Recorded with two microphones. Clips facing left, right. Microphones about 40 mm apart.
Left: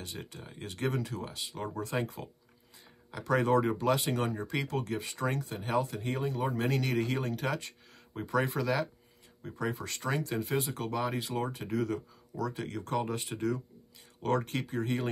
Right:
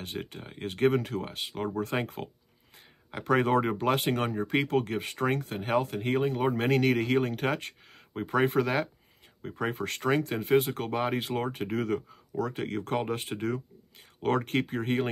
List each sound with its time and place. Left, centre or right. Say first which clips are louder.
0.0 s speech: right 5 dB; right